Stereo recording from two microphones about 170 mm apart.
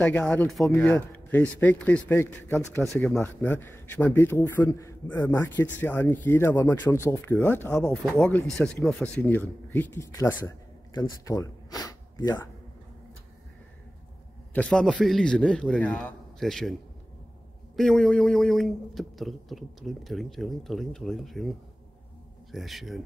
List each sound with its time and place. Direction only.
0.0 s speech: 5° left (ahead or behind); by 12.4 s 25° left (ahead or behind)
14.5 s a man's voice: 5° left (ahead or behind)
17.7 s speech: centre (ahead or behind)